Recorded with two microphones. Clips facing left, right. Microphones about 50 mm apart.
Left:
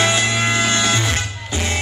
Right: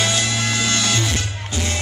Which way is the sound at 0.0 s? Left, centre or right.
Left.